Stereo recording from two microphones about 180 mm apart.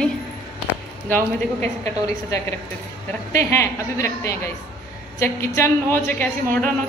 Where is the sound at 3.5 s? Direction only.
15° left (ahead or behind).